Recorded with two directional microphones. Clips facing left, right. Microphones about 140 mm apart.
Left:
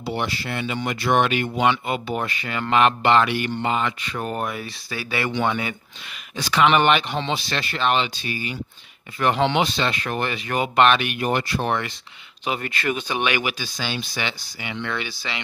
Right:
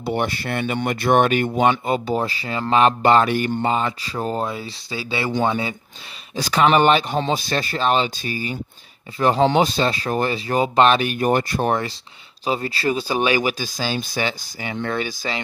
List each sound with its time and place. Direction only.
0.0 s speech: 50° right (ahead or behind); by 5.3 s 25° right (ahead or behind)
5.3 s speech: 35° right (ahead or behind)